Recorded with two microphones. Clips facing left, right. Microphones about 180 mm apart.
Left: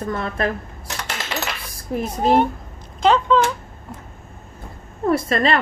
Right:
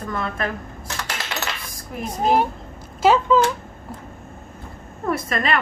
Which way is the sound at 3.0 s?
5° right (ahead or behind).